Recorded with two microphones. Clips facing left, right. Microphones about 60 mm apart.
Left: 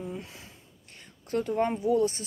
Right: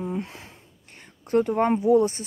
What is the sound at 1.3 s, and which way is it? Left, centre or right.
Speech, right.